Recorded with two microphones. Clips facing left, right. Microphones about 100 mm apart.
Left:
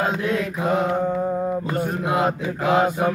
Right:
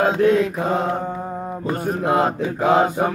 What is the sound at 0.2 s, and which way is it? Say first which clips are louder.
Mantra: right 7 dB; 40° right (ahead or behind).